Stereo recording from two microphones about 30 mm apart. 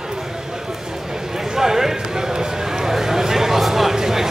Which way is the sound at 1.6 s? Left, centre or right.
Centre.